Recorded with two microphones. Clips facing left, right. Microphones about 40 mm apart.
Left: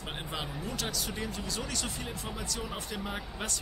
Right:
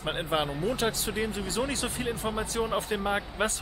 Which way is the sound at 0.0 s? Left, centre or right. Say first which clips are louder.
Right 9 dB; right.